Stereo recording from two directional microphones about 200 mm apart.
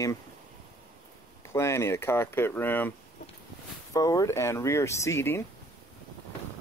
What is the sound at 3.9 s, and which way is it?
Speech, 15° left (ahead or behind).